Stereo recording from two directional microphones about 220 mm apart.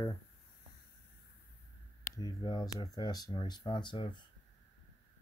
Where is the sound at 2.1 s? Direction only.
15° left (ahead or behind).